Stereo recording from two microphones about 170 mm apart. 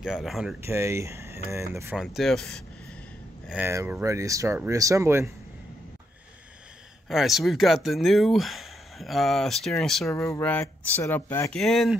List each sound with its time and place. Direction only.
0.0 s speech: centre (ahead or behind)
0.6 s speech: 15° right (ahead or behind)
2.0 s speech: centre (ahead or behind)
3.4 s speech: 10° right (ahead or behind)
7.1 s speech: centre (ahead or behind)
10.0 s speech: 15° left (ahead or behind)
11.5 s speech: centre (ahead or behind)